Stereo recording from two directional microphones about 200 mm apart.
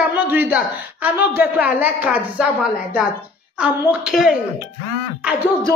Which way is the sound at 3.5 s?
5° right (ahead or behind).